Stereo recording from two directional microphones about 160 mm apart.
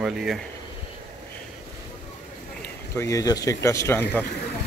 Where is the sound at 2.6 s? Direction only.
15° left (ahead or behind).